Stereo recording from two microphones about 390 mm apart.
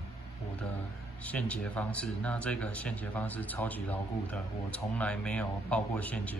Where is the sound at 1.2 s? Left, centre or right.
Centre.